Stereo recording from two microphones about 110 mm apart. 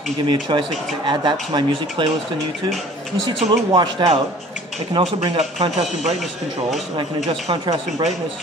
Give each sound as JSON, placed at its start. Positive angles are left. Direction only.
{"t": 0.3, "sound": "speech", "side_deg": -45}
{"t": 3.3, "sound": "speech", "side_deg": -50}
{"t": 5.4, "sound": "speech", "side_deg": -90}
{"t": 7.2, "sound": "speech", "side_deg": -50}